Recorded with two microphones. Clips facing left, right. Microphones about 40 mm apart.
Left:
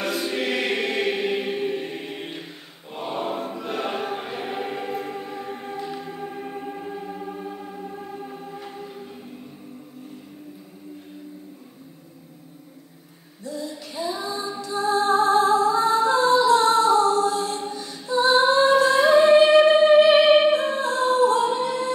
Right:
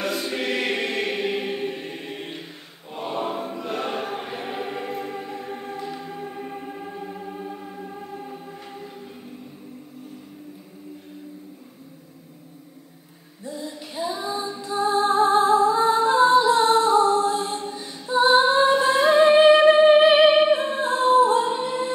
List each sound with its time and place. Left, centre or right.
0.0 s choir: centre
13.4 s female singing: right
14.6 s music: centre
19.6 s music: right
20.5 s a capella: right